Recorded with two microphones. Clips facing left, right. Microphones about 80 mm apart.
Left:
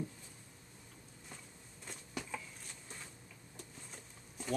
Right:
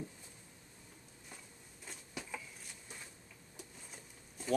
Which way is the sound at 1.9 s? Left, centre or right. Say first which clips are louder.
Left 2 dB; centre.